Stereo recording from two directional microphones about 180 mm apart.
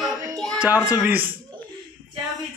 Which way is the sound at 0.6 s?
10° right (ahead or behind).